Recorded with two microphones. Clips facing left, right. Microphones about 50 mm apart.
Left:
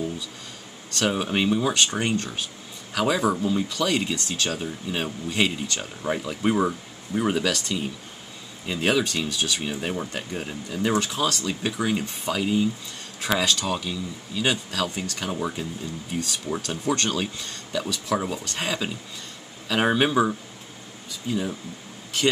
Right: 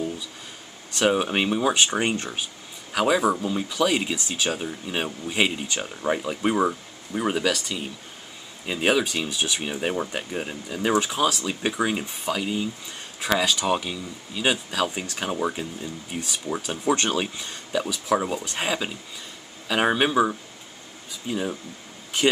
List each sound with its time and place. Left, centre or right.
0.9 s speech: centre
2.9 s speech: centre
13.7 s speech: centre